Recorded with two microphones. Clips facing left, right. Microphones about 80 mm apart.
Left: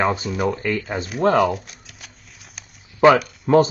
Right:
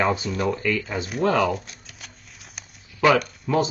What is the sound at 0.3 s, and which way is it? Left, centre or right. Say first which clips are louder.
Speech: left 2 dB; centre.